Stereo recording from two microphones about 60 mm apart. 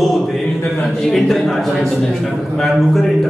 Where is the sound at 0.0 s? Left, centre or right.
Centre.